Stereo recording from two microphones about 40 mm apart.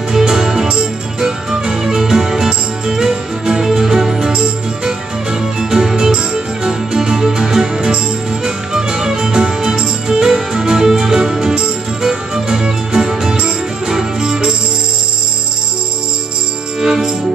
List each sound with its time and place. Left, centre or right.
0.1 s music: centre
16.8 s music: centre